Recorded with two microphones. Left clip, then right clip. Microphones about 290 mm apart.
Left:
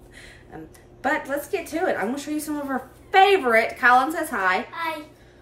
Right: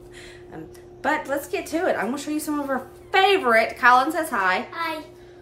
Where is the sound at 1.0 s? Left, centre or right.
Centre.